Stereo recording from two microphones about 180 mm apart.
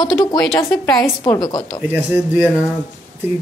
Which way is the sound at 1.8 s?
10° right (ahead or behind).